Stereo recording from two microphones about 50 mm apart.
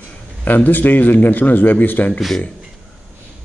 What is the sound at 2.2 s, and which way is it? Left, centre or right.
Speech, centre.